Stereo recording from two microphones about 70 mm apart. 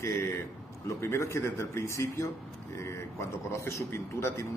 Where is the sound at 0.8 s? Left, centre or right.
Left.